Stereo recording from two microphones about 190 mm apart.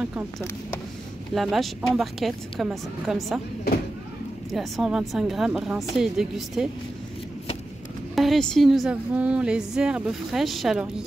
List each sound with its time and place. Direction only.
0.0 s speech: 5° right (ahead or behind)
1.3 s a woman's voice: centre (ahead or behind)
4.5 s a woman's voice: centre (ahead or behind)
8.2 s a woman's voice: centre (ahead or behind)